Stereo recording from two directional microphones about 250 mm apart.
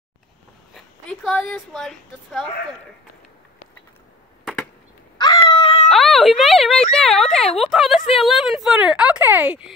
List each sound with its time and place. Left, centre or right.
0.7 s speech: centre
5.1 s a sound: centre
5.9 s speech: centre